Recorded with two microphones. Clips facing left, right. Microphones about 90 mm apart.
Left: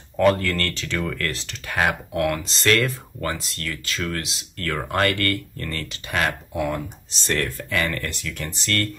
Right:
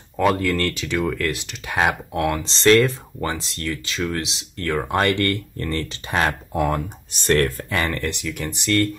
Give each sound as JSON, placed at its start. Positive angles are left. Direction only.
{"t": 0.2, "sound": "speech", "side_deg": -10}
{"t": 6.5, "sound": "speech", "side_deg": -45}
{"t": 7.7, "sound": "speech", "side_deg": -30}